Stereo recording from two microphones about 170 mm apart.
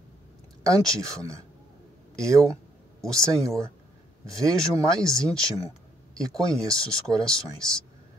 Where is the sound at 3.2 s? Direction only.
20° right (ahead or behind).